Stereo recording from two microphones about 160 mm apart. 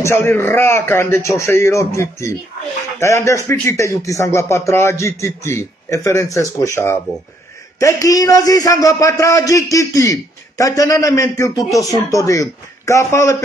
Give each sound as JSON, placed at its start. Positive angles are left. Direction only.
{"t": 0.0, "sound": "a man's voice", "side_deg": 15}